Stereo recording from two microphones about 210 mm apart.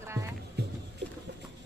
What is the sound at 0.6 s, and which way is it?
Rowboat, 50° right (ahead or behind).